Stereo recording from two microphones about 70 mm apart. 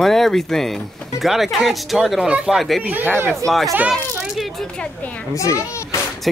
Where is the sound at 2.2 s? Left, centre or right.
Centre.